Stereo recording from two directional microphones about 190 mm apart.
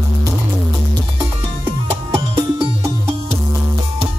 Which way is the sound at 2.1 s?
25° right (ahead or behind).